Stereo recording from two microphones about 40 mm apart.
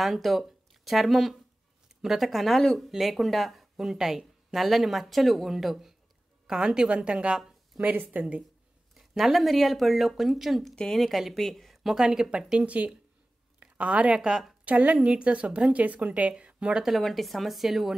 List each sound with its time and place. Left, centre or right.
0.0 s speech: centre
2.5 s a woman's voice: centre
2.9 s speech: centre
3.7 s speech: centre
6.4 s a woman's voice: centre
7.8 s speech: right
8.9 s a woman's voice: centre
11.7 s speech: centre
12.5 s a woman's voice: right
14.2 s a woman's voice: centre
14.6 s a woman's voice: right
17.0 s speech: centre